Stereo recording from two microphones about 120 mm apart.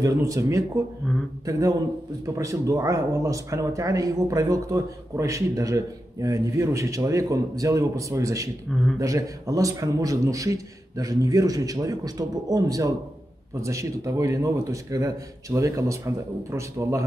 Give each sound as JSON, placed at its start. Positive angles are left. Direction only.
{"t": 0.0, "sound": "speech", "side_deg": -30}